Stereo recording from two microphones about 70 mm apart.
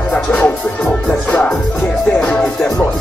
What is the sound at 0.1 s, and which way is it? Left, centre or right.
Music, centre.